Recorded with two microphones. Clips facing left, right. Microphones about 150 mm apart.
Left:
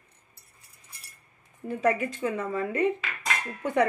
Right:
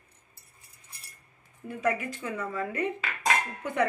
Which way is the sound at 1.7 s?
30° left (ahead or behind).